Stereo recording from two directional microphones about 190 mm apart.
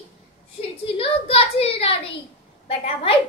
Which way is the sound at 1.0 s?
30° left (ahead or behind).